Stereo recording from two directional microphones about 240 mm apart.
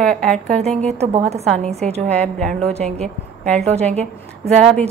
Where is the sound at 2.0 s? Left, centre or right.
Centre.